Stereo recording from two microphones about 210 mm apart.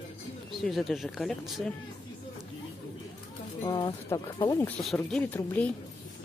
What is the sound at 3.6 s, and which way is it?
Speech, 20° left (ahead or behind).